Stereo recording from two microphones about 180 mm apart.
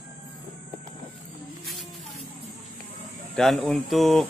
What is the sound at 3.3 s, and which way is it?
Speech, centre (ahead or behind).